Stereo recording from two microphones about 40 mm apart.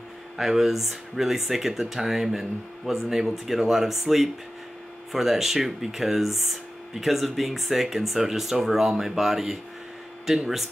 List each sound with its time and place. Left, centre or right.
0.4 s speech: centre